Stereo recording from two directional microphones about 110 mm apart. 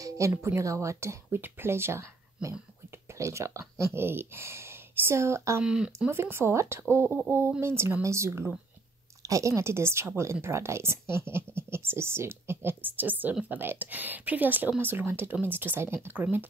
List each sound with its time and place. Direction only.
0.4 s a woman's voice: 25° right (ahead or behind)
5.6 s speech: 10° right (ahead or behind)
6.0 s a woman's voice: 20° right (ahead or behind)